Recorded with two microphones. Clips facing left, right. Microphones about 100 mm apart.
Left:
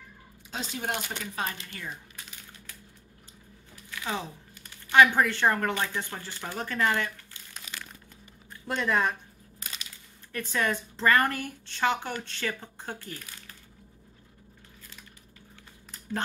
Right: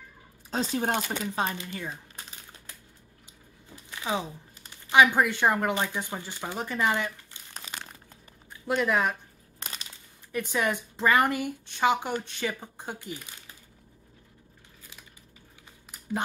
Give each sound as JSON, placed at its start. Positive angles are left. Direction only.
{"t": 0.5, "sound": "speech", "side_deg": -35}
{"t": 3.9, "sound": "a sound", "side_deg": -15}
{"t": 5.0, "sound": "speech", "side_deg": -15}
{"t": 7.5, "sound": "crumpling", "side_deg": -30}
{"t": 8.5, "sound": "speech", "side_deg": 0}
{"t": 10.3, "sound": "speech", "side_deg": -15}